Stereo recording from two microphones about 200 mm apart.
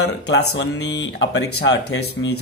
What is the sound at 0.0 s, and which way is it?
Speech, 55° left (ahead or behind).